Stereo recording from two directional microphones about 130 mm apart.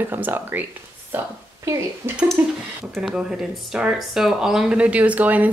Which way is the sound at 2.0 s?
20° right (ahead or behind).